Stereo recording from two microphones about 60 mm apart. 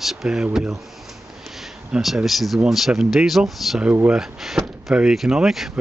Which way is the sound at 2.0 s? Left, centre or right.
Centre.